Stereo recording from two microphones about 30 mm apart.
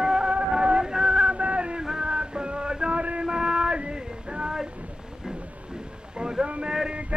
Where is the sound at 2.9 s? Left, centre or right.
Right.